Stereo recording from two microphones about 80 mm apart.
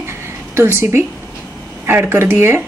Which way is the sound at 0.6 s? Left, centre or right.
Right.